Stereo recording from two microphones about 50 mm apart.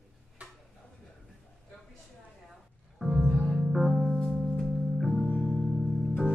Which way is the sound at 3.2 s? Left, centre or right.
Centre.